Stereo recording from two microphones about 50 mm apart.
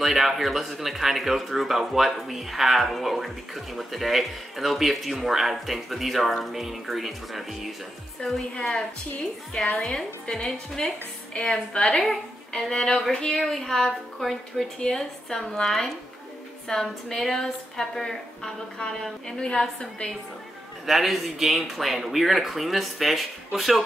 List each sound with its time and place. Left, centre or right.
0.0 s speech: centre
8.2 s a woman's voice: centre
12.0 s a woman's voice: centre
20.8 s speech: centre